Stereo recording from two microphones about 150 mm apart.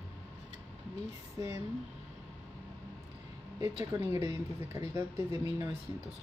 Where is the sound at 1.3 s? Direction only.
20° right (ahead or behind).